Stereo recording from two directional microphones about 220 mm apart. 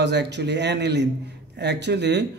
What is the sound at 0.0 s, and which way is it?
Speech, 50° right (ahead or behind).